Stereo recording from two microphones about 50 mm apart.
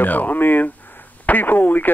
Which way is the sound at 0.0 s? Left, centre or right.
Left.